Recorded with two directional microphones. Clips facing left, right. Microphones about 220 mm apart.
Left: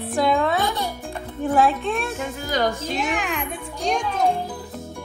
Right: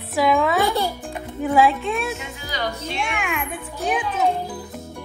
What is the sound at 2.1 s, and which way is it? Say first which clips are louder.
Speech: left 6 dB; 50° left (ahead or behind).